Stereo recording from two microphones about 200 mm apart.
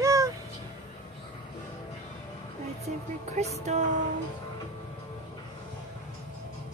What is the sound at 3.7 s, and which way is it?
Music, 35° right (ahead or behind).